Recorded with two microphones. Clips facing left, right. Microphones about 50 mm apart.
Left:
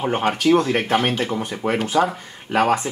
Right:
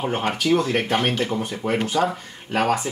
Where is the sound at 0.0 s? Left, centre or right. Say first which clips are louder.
Left 4 dB; centre.